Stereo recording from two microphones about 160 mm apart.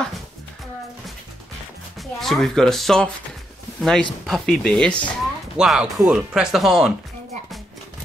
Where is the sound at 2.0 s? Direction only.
Centre (ahead or behind).